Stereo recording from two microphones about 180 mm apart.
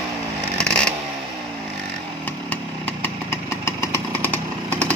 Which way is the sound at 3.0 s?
15° left (ahead or behind).